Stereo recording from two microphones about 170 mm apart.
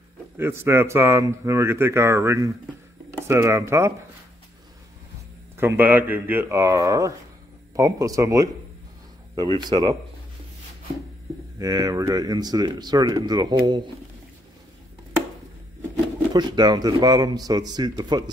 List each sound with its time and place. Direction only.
0.4 s speech: 15° right (ahead or behind)
5.6 s speech: 10° right (ahead or behind)
9.6 s speech: 25° right (ahead or behind)
11.5 s speech: 20° right (ahead or behind)
16.3 s speech: 25° right (ahead or behind)